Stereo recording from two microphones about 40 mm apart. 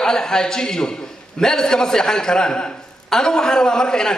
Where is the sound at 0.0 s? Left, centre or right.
Centre.